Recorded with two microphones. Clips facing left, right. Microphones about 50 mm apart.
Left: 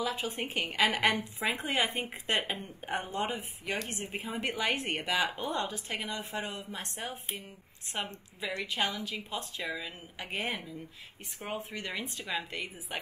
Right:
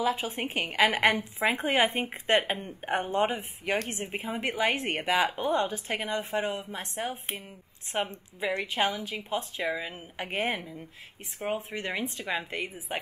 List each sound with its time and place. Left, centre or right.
0.0 s a woman's voice: right
3.7 s a woman's voice: right
4.0 s a woman's voice: right
5.4 s a woman's voice: right
7.9 s a woman's voice: right
11.4 s speech: centre
11.7 s a woman's voice: right